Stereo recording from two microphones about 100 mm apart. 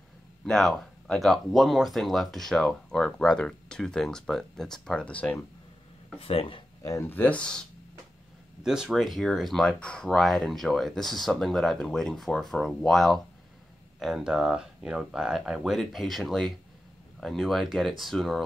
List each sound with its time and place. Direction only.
0.5 s speech: 5° left (ahead or behind)
6.1 s speech: 75° left (ahead or behind)
6.8 s speech: 35° left (ahead or behind)
7.1 s speech: 15° left (ahead or behind)
8.6 s speech: 5° right (ahead or behind)